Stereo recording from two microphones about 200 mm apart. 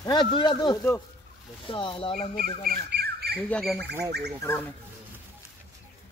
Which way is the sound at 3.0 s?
55° right (ahead or behind).